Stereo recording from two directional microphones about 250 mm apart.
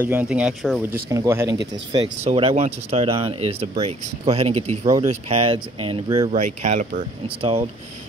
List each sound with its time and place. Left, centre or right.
0.0 s speech: centre
6.3 s speech: right